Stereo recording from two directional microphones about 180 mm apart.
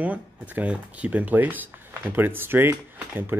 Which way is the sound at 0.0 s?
10° right (ahead or behind).